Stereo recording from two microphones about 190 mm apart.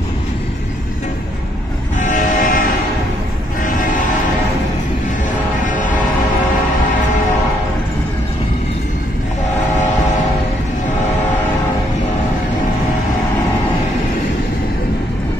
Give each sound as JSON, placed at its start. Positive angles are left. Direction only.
{"t": 2.0, "sound": "train", "side_deg": 40}